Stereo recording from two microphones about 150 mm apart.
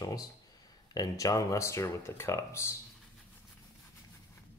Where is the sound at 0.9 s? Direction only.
25° left (ahead or behind).